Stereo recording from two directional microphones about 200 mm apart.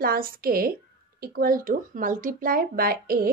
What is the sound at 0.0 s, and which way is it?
Speech, 45° right (ahead or behind).